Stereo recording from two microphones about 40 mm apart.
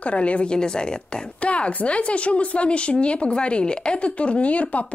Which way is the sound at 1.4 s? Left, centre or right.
Left.